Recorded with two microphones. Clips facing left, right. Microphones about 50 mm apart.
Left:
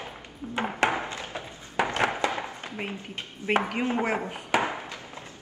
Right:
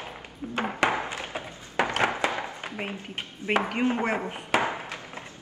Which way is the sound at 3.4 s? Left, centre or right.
Left.